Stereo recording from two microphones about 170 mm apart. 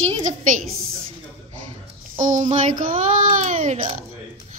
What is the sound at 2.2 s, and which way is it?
A child's voice, 45° right (ahead or behind).